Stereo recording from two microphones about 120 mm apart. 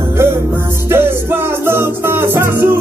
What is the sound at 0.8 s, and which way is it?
Music, 20° right (ahead or behind).